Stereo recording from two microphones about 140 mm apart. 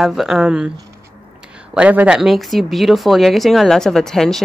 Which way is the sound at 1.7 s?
10° right (ahead or behind).